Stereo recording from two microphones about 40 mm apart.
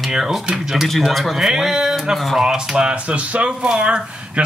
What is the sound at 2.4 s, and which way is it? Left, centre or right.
Speech, centre.